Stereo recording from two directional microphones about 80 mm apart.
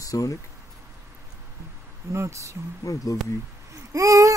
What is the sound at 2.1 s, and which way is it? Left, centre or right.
Speech, right.